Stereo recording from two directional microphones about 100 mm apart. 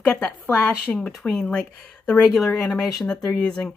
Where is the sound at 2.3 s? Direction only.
Centre (ahead or behind).